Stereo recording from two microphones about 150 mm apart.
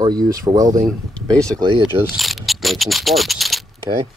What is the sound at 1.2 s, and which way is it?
Speech, 5° left (ahead or behind).